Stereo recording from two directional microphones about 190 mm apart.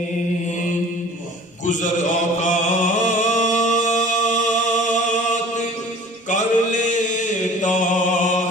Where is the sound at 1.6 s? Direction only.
40° left (ahead or behind).